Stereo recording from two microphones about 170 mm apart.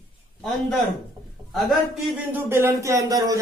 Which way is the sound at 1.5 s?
Centre (ahead or behind).